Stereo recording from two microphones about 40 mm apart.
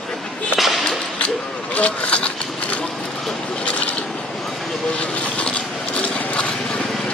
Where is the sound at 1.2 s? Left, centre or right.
Left.